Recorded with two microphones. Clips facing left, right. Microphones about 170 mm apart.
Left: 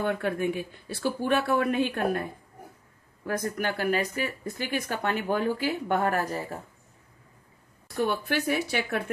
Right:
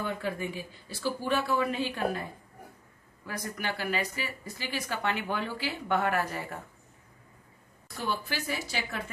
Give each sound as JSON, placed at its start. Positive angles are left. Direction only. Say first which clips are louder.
{"t": 0.0, "sound": "speech", "louder": "left 6 dB", "side_deg": 60}
{"t": 3.3, "sound": "speech", "louder": "left 6 dB", "side_deg": 50}
{"t": 7.9, "sound": "speech", "louder": "left 7 dB", "side_deg": 55}